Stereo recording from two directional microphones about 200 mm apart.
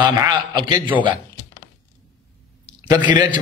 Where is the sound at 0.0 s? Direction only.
20° right (ahead or behind).